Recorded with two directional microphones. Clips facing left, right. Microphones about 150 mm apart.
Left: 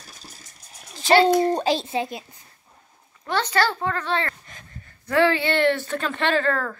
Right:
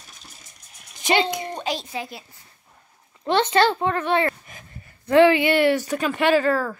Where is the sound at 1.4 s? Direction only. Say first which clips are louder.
Left 7 dB; 40° left (ahead or behind); by 2.2 s 20° left (ahead or behind).